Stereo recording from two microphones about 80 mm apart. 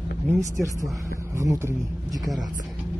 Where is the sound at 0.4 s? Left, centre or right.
Right.